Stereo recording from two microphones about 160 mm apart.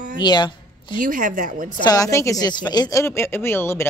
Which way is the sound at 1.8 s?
20° left (ahead or behind).